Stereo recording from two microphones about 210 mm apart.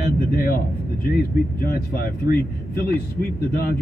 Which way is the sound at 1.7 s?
45° left (ahead or behind).